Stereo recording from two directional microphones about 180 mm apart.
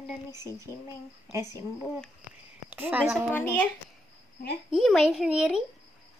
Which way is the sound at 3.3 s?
10° left (ahead or behind).